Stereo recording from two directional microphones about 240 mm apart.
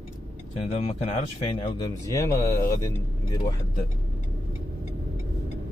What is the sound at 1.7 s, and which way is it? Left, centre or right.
Speech, centre.